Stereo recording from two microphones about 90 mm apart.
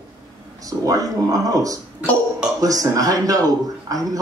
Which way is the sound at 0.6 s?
40° right (ahead or behind).